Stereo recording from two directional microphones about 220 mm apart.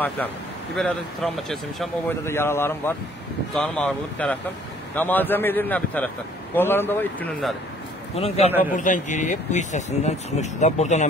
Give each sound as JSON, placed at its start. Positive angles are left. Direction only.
{"t": 0.7, "sound": "speech", "side_deg": 0}
{"t": 2.2, "sound": "a man's voice", "side_deg": 10}
{"t": 8.1, "sound": "a man's voice", "side_deg": 25}